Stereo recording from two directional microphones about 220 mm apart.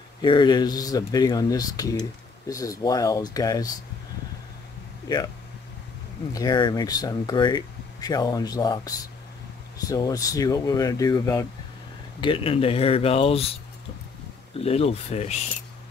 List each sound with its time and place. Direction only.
0.2 s speech: 20° left (ahead or behind)
6.3 s speech: 15° left (ahead or behind)
14.6 s speech: 25° left (ahead or behind)